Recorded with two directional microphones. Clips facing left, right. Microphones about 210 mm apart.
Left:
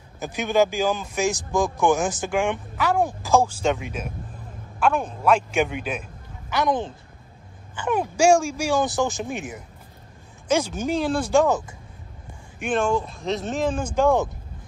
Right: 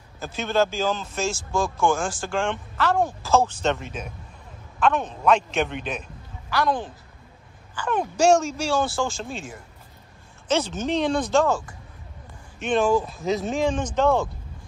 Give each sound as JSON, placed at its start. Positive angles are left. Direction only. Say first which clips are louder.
{"t": 0.2, "sound": "speech", "louder": "left 2 dB", "side_deg": 15}
{"t": 6.5, "sound": "a woman's voice", "louder": "left 1 dB", "side_deg": 20}
{"t": 7.9, "sound": "speech", "louder": "left 1 dB", "side_deg": 10}
{"t": 12.7, "sound": "speech", "louder": "right 2 dB", "side_deg": -5}